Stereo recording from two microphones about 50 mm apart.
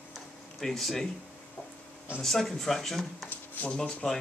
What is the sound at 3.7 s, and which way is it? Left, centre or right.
Speech, centre.